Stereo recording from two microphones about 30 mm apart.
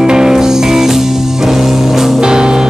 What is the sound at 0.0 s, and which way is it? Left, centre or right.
Music, right.